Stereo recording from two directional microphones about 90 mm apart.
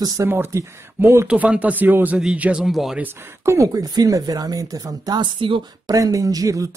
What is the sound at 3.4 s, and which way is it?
Speech, 40° right (ahead or behind).